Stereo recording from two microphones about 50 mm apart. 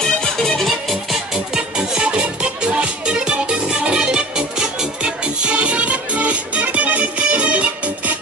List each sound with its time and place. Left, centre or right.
0.0 s music: centre
0.8 s music: centre; by 8.2 s right